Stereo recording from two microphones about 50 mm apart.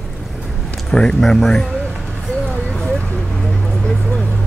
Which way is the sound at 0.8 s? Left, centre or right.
Centre.